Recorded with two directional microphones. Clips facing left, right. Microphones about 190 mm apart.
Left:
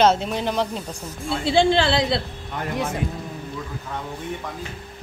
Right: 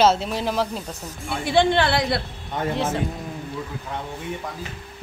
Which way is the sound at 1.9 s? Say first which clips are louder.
Left 1 dB; 25° left (ahead or behind).